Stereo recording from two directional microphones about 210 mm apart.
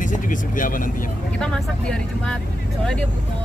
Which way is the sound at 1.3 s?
5° left (ahead or behind).